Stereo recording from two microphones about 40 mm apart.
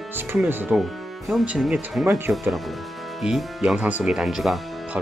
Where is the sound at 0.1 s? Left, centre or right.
Right.